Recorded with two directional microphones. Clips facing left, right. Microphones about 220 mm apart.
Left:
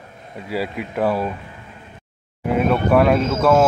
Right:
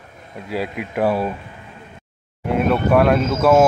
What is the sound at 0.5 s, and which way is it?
Speech, centre (ahead or behind).